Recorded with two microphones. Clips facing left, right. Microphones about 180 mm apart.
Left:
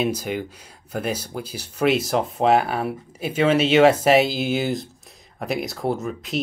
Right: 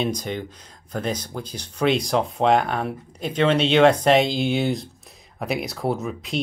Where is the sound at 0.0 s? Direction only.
5° left (ahead or behind).